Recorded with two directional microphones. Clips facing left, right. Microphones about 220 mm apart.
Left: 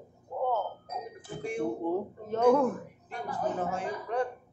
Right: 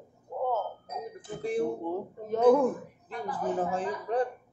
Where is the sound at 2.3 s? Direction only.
10° right (ahead or behind).